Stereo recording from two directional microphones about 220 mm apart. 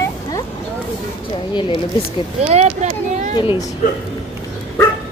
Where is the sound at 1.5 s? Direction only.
20° left (ahead or behind).